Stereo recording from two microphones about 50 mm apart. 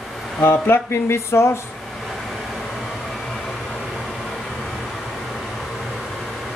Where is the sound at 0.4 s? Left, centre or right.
Left.